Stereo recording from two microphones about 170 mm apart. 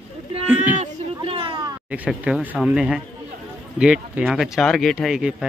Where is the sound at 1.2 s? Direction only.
30° right (ahead or behind).